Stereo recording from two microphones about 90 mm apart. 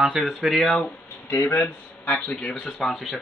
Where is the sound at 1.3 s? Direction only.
30° left (ahead or behind).